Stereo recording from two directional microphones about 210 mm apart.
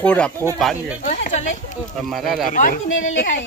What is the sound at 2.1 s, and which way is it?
Speech, centre (ahead or behind).